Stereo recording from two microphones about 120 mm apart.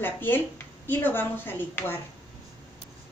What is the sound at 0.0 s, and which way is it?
A woman's voice, 15° left (ahead or behind).